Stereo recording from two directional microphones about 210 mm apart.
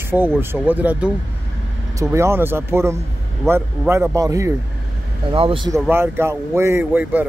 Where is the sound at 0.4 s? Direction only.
10° right (ahead or behind).